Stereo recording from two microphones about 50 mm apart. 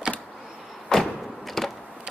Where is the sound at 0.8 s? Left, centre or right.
Centre.